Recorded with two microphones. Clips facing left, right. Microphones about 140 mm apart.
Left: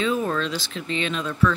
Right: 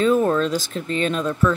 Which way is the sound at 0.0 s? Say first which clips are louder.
Right 6 dB; 45° right (ahead or behind).